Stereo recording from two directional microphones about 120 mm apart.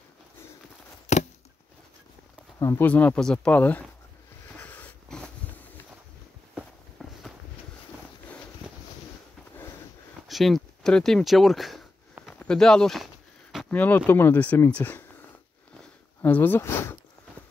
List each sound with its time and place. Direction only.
1.1 s a sound: 70° left (ahead or behind)
2.6 s speech: 20° left (ahead or behind)
4.6 s dog: 15° left (ahead or behind)
6.5 s walk: centre (ahead or behind)
10.2 s speech: centre (ahead or behind)
12.4 s a sound: 5° left (ahead or behind)
13.7 s speech: 15° left (ahead or behind)
16.2 s speech: 15° left (ahead or behind)